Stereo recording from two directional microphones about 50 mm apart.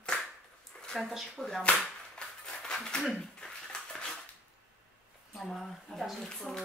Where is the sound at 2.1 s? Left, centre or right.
Centre.